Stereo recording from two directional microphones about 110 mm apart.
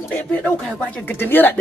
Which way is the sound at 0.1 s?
10° left (ahead or behind).